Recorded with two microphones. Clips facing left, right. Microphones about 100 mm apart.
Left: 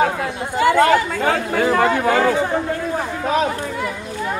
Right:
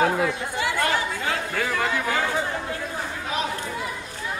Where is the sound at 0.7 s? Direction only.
65° left (ahead or behind).